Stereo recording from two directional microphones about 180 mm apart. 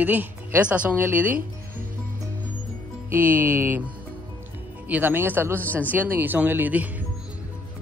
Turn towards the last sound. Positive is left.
turn(degrees=-10)  # may be behind; listen again after turning